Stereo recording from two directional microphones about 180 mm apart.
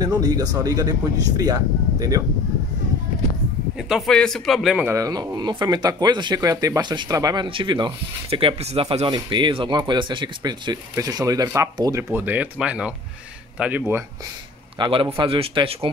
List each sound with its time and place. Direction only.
0.0 s speech: 20° right (ahead or behind)
3.7 s a man's voice: centre (ahead or behind)
4.8 s speech: 20° right (ahead or behind)
14.8 s speech: 30° right (ahead or behind)